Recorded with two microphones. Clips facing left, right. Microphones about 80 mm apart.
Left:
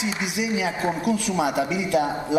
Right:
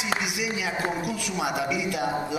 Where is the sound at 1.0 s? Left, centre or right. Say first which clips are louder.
Left 6 dB; left.